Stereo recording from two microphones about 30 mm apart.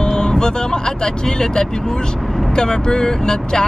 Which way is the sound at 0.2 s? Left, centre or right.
Left.